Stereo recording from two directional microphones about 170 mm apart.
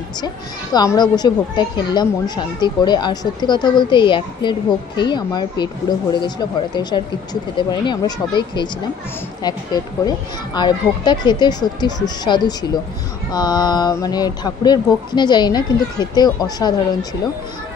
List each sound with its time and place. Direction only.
0.7 s a child's voice: 25° left (ahead or behind)
10.0 s a child's voice: 25° left (ahead or behind)